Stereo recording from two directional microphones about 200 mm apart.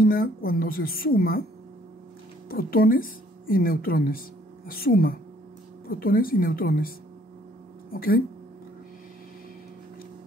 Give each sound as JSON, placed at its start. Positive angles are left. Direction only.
{"t": 0.0, "sound": "a woman's voice", "side_deg": 45}
{"t": 2.5, "sound": "a woman's voice", "side_deg": 45}
{"t": 7.9, "sound": "speech", "side_deg": 45}